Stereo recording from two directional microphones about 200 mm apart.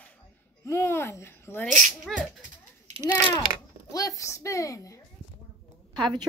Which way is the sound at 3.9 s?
15° left (ahead or behind).